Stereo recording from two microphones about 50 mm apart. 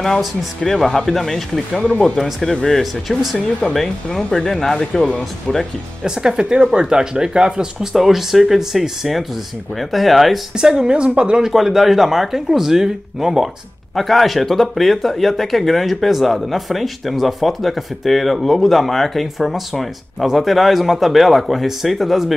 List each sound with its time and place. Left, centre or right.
0.6 s speech: centre
2.8 s speech: centre
6.0 s speech: centre
10.6 s speech: centre
11.4 s speech: centre